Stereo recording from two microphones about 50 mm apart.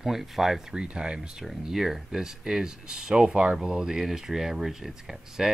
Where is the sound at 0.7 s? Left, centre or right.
Centre.